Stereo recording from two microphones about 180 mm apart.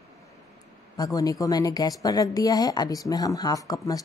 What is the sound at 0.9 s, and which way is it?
Speech, 20° left (ahead or behind).